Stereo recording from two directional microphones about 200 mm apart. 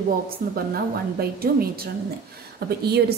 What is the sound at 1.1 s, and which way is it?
Speech, 50° right (ahead or behind).